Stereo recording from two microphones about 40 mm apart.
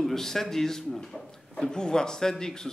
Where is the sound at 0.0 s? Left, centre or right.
Centre.